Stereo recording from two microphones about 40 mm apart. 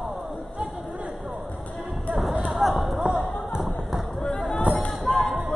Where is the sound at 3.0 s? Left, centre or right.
Right.